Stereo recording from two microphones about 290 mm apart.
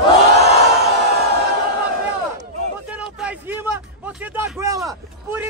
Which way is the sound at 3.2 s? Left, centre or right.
Centre.